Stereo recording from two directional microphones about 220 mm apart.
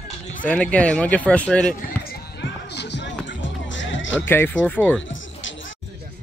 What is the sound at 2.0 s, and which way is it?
Music, 50° left (ahead or behind).